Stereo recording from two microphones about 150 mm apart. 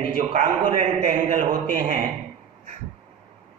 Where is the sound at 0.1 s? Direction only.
60° right (ahead or behind).